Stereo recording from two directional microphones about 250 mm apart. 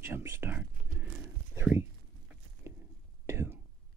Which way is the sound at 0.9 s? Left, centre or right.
Centre.